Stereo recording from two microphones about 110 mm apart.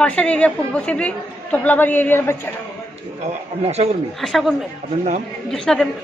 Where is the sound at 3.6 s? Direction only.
70° right (ahead or behind).